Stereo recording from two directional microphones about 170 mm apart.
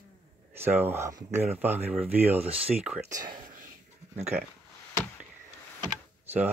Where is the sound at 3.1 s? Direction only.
25° right (ahead or behind).